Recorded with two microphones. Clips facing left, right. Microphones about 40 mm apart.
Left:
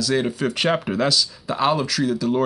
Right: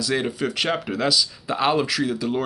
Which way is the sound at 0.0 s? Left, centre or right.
Centre.